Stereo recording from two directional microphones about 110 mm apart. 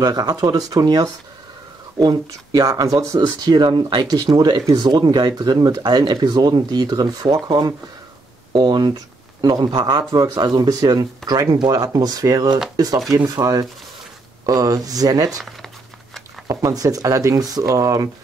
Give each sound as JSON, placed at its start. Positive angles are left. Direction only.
{"t": 0.0, "sound": "speech", "side_deg": -35}
{"t": 16.4, "sound": "speech", "side_deg": -35}